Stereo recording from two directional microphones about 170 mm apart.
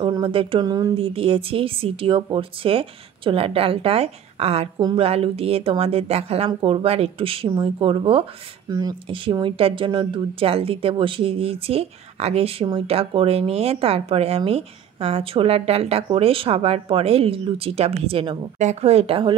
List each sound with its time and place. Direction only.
0.0 s speech: 30° right (ahead or behind)